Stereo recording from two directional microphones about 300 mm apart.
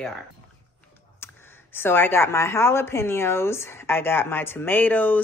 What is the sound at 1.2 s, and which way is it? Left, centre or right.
Speech, centre.